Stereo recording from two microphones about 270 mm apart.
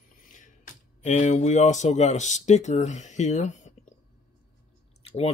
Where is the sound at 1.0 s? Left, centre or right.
Left.